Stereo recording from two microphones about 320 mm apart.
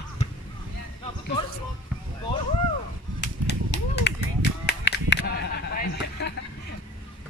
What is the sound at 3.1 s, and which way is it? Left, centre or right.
Whip, left.